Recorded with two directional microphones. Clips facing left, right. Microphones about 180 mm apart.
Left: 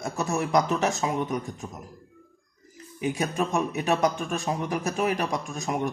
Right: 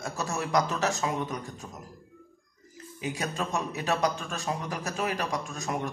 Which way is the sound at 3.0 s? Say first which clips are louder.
Left 6 dB; 20° left (ahead or behind).